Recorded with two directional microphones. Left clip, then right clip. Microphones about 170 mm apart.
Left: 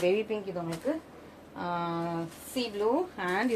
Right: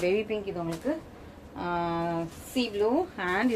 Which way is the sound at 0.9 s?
40° right (ahead or behind).